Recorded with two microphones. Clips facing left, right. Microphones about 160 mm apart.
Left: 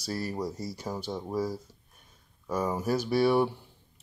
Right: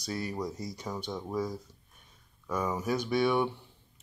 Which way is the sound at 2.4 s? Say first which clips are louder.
Left 2 dB; 30° left (ahead or behind).